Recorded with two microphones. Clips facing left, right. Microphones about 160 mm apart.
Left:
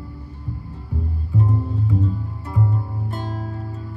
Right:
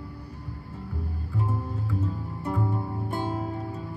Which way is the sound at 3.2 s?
15° right (ahead or behind).